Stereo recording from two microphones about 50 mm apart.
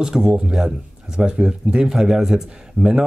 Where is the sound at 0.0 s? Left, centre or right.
Centre.